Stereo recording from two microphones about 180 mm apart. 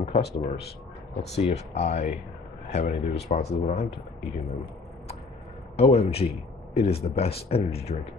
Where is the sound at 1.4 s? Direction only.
40° left (ahead or behind).